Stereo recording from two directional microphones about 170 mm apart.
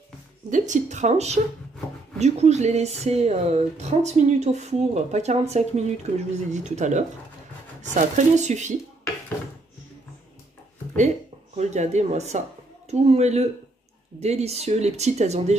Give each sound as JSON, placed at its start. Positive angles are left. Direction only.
{"t": 0.5, "sound": "a woman's voice", "side_deg": -45}
{"t": 11.5, "sound": "a woman's voice", "side_deg": -40}